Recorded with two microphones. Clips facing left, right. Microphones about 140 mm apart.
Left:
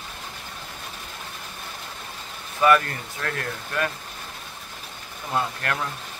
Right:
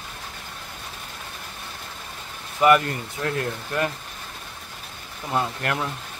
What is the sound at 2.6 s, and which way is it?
Speech, 20° right (ahead or behind).